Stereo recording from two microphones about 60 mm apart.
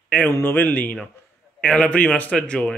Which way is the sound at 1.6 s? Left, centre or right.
Centre.